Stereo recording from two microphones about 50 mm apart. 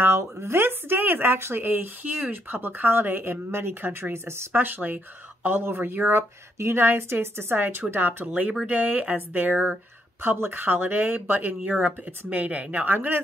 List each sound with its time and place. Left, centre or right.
0.0 s speech: right
4.5 s speech: right
5.6 s speech: right
8.6 s speech: right
11.8 s speech: right